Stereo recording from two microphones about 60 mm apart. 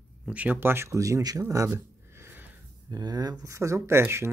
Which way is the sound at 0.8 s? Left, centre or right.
Right.